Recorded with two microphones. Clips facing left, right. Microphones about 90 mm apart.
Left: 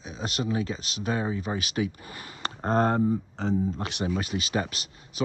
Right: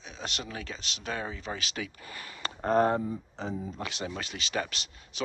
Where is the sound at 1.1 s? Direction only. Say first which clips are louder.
Left 6 dB; 20° left (ahead or behind); by 3.8 s 35° left (ahead or behind).